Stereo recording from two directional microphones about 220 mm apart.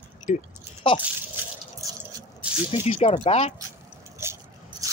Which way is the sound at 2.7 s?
30° left (ahead or behind).